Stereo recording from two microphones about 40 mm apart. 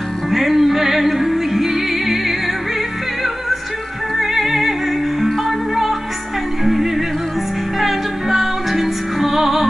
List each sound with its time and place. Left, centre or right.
0.3 s music: centre
4.2 s music: centre
6.6 s music: centre